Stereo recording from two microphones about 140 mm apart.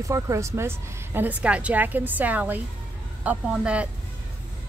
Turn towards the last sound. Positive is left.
turn(degrees=-10)  # may be behind; listen again after turning